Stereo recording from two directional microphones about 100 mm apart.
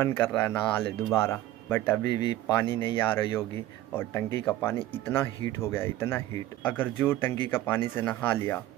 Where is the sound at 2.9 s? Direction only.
20° left (ahead or behind).